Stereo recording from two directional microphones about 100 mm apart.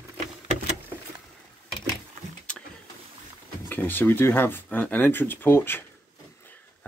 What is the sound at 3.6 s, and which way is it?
Speech, 20° left (ahead or behind).